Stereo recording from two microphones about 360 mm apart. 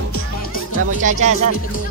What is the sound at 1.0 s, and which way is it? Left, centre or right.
Speech, centre.